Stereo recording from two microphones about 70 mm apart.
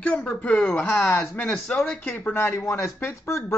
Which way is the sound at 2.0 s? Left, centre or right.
Left.